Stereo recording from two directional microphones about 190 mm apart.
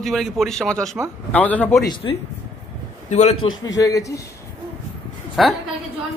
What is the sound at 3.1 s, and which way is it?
Speech, 40° left (ahead or behind).